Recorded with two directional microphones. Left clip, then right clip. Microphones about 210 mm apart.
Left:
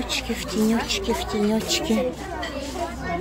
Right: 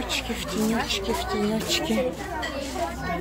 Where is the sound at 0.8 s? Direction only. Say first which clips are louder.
Left 1 dB; 45° left (ahead or behind).